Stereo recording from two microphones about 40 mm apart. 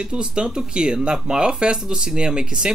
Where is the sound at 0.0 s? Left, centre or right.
Right.